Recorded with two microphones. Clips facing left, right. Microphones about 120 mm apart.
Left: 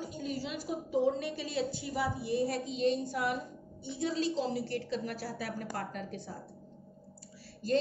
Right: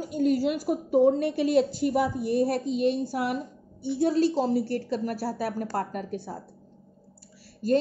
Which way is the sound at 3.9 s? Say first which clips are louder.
Right 9 dB; 55° right (ahead or behind).